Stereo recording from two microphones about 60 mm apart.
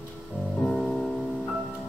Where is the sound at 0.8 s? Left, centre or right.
Left.